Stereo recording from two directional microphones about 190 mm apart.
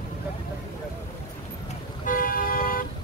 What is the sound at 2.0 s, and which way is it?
Toot, 45° left (ahead or behind).